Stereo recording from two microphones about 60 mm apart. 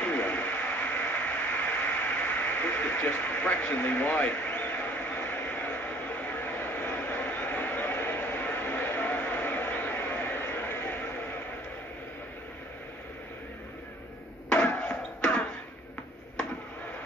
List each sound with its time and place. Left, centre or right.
0.0 s radio: left
14.8 s basketball bounce: left